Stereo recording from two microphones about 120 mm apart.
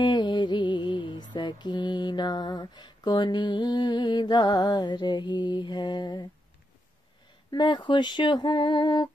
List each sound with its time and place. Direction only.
0.0 s mantra: 35° left (ahead or behind)
7.5 s female singing: 40° left (ahead or behind)